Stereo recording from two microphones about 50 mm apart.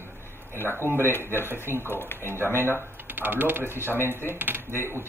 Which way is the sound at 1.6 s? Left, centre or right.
Right.